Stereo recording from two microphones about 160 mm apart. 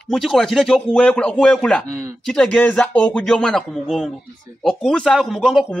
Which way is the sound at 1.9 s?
20° right (ahead or behind).